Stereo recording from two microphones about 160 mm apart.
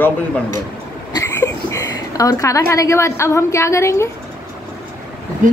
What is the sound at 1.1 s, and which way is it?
A woman's voice, 20° left (ahead or behind).